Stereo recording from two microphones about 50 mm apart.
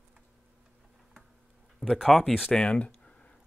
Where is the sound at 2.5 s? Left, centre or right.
Centre.